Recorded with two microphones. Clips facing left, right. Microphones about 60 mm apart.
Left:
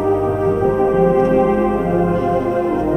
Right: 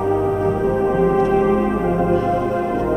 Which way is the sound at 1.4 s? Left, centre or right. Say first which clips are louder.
Left 2 dB; centre.